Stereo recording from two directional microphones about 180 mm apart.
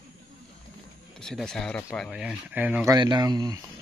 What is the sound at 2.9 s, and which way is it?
Speech, 25° right (ahead or behind).